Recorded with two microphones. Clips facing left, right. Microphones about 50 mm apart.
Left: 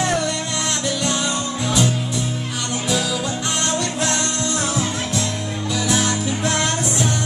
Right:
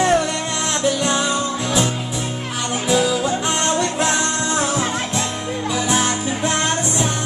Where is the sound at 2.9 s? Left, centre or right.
Right.